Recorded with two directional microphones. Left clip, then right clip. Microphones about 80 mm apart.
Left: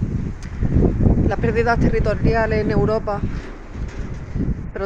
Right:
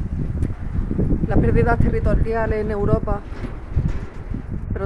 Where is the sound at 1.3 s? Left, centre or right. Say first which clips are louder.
Right 1 dB; centre.